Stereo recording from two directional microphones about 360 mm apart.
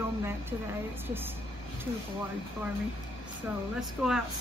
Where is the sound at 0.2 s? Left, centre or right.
Centre.